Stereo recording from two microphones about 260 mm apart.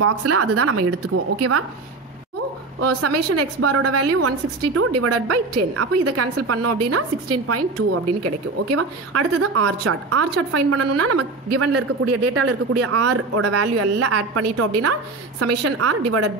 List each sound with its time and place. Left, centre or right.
0.0 s a woman's voice: right
2.8 s a woman's voice: right